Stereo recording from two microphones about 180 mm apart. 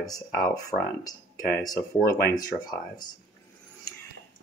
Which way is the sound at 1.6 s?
20° left (ahead or behind).